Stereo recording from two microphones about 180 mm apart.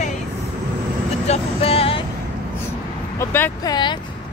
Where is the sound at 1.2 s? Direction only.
35° left (ahead or behind).